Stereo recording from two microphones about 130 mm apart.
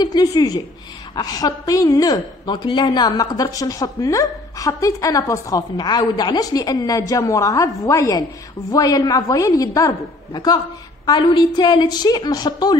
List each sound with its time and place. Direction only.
0.0 s a woman's voice: 30° left (ahead or behind)